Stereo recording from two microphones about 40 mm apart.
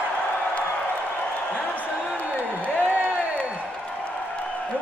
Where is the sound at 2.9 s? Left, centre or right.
Right.